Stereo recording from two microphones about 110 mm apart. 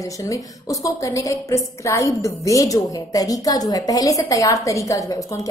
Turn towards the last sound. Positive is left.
turn(degrees=30)  # may be behind; listen again after turning